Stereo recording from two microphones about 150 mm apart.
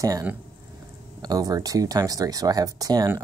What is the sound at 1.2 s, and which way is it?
Speech, 25° right (ahead or behind).